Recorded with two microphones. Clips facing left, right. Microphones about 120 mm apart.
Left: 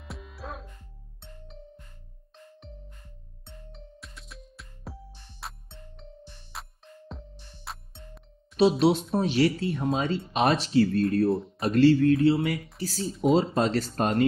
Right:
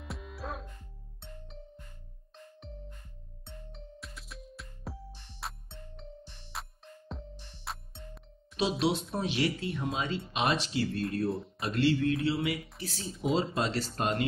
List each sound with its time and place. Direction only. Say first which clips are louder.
0.0 s music: even; centre (ahead or behind)
3.4 s music: even; centre (ahead or behind)
8.5 s speech: left 8 dB; 40° left (ahead or behind)
11.2 s speech: left 7 dB; centre (ahead or behind)
11.6 s speech: left 8 dB; 40° left (ahead or behind)
13.1 s speech: left 8 dB; centre (ahead or behind)
13.6 s speech: left 6 dB; 45° left (ahead or behind)